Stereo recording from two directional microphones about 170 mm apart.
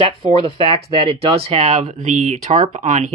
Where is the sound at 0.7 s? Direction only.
35° right (ahead or behind).